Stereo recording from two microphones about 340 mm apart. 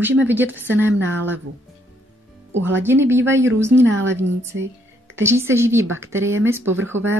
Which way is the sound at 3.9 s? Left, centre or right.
Right.